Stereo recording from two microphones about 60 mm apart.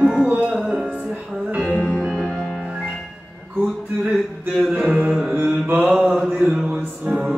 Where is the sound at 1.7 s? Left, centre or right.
Centre.